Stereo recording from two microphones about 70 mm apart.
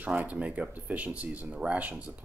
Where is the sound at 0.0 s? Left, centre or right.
Right.